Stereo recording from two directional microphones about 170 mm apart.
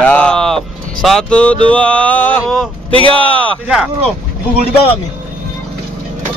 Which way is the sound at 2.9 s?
30° right (ahead or behind).